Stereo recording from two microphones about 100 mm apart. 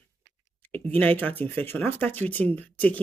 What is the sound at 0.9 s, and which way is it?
Speech, 15° left (ahead or behind).